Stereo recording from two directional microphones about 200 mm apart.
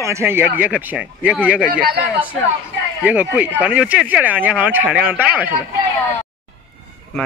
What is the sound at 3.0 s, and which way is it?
Speech, 10° right (ahead or behind).